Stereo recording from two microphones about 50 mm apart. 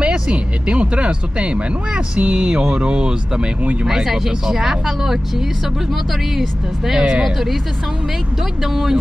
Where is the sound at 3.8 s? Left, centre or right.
Centre.